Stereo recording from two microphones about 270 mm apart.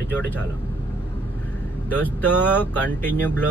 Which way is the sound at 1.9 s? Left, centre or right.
Centre.